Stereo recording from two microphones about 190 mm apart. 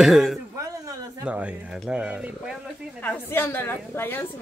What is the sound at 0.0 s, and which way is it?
Speech, centre (ahead or behind).